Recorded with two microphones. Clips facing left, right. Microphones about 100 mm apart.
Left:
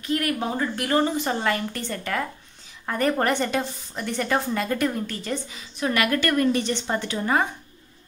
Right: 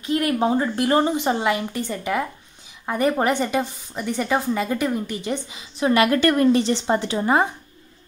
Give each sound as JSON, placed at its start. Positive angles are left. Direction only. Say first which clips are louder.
{"t": 0.0, "sound": "a woman's voice", "louder": "right 5 dB", "side_deg": -25}